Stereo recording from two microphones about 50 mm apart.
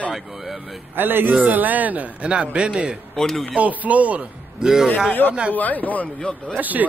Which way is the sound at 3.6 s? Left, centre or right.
Right.